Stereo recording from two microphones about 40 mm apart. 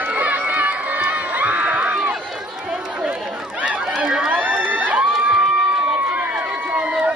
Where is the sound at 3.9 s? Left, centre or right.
Centre.